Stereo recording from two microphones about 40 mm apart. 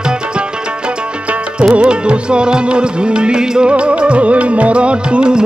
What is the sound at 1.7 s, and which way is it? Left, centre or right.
Music, right.